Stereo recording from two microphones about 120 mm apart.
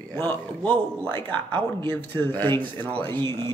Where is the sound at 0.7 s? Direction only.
45° right (ahead or behind).